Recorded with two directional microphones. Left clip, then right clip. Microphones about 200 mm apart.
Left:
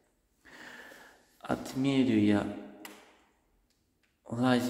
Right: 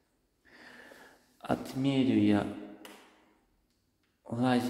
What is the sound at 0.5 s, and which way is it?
Sniff, 10° left (ahead or behind).